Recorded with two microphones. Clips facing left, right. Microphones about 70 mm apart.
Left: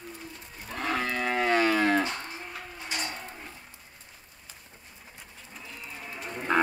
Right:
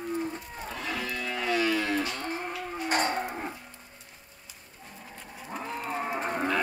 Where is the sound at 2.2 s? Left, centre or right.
Right.